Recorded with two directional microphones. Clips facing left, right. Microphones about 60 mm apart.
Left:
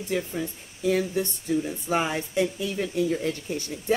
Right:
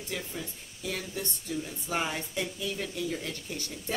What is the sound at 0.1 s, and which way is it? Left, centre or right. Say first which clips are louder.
Speech: left 9 dB; left.